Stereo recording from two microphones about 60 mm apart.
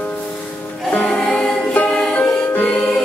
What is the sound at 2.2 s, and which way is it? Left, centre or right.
Music, left.